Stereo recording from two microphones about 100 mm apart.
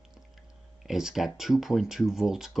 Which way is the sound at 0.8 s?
5° right (ahead or behind).